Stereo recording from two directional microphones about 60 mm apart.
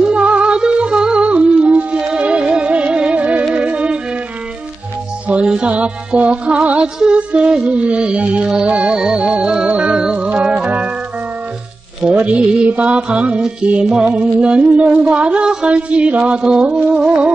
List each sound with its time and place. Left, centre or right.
0.0 s music: centre
5.3 s music: centre
7.0 s mantra: centre
8.5 s music: centre
12.0 s mantra: right